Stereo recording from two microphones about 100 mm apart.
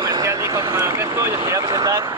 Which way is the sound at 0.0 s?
35° right (ahead or behind).